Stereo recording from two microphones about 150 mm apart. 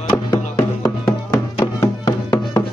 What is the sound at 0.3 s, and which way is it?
Music, 20° left (ahead or behind).